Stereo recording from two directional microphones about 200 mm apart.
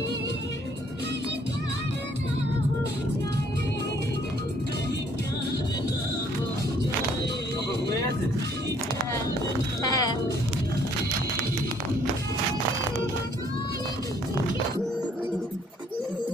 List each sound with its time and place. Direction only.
9.8 s music: 20° left (ahead or behind)